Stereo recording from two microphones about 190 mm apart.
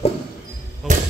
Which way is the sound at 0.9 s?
40° right (ahead or behind).